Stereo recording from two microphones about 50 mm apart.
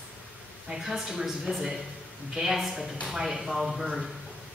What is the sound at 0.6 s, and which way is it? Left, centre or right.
A woman's voice, centre.